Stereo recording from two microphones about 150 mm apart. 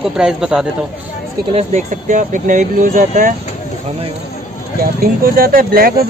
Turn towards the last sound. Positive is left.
turn(degrees=-80)